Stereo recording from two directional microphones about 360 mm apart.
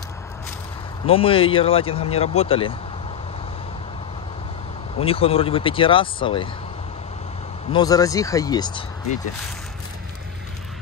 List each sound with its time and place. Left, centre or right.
1.0 s speech: centre
4.9 s speech: centre
7.7 s speech: centre